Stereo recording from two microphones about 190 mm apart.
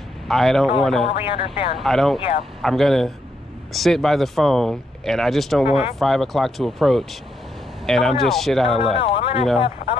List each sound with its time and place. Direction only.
0.3 s speech: centre (ahead or behind)
1.0 s speech: 25° left (ahead or behind)
1.8 s speech: centre (ahead or behind)
5.7 s speech: 30° left (ahead or behind)
5.9 s speech: centre (ahead or behind)
8.6 s speech: 30° left (ahead or behind)